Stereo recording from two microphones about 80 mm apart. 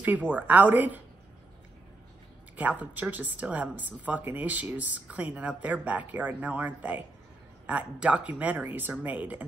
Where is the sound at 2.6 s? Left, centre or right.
Centre.